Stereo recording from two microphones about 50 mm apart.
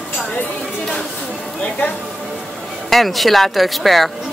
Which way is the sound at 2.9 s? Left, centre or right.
Centre.